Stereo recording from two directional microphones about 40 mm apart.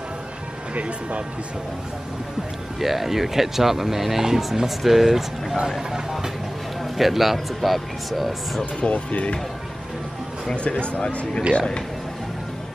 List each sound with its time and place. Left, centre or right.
0.7 s speech: right
2.8 s speech: centre
6.8 s speech: centre
8.8 s speech: left
10.5 s speech: left